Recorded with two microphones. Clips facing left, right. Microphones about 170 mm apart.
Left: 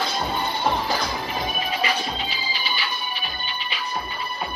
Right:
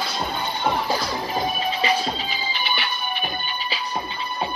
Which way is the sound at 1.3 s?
30° right (ahead or behind).